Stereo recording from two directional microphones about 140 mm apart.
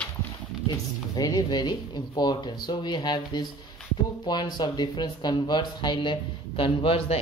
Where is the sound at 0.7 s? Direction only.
25° left (ahead or behind).